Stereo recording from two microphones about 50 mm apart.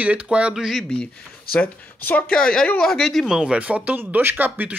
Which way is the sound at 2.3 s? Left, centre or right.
Centre.